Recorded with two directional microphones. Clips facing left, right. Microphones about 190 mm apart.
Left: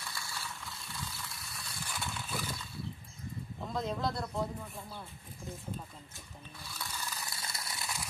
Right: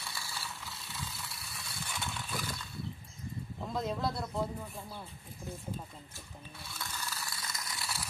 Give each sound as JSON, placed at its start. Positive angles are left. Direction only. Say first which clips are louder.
{"t": 0.0, "sound": "mechanisms", "louder": "even", "side_deg": -5}
{"t": 3.6, "sound": "speech", "louder": "even", "side_deg": 0}
{"t": 6.6, "sound": "music", "louder": "even", "side_deg": 0}
{"t": 7.1, "sound": "a sound", "louder": "even", "side_deg": 25}